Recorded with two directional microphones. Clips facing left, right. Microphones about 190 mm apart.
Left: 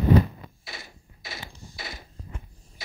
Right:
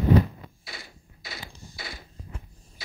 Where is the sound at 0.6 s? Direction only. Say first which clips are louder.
Left 1 dB; 25° left (ahead or behind).